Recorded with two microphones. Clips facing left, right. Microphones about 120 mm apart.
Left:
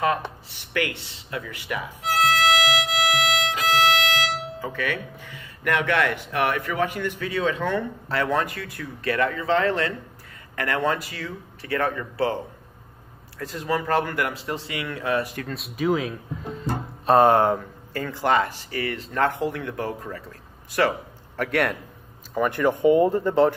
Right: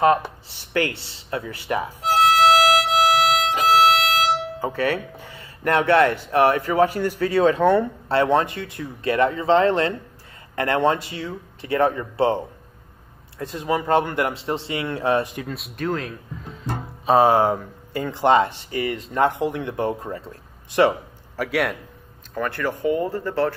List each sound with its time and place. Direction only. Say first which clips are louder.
0.5 s music: right 4 dB; 30° right (ahead or behind)
6.3 s speech: right 8 dB; 30° right (ahead or behind)
15.5 s speech: left 4 dB; centre (ahead or behind)
17.9 s speech: right 4 dB; 20° right (ahead or behind)
21.4 s a man's voice: even; 5° right (ahead or behind)
22.3 s speech: left 4 dB; 15° left (ahead or behind)